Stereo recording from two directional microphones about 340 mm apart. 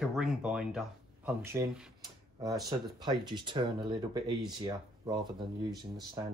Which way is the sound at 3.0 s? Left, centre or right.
Centre.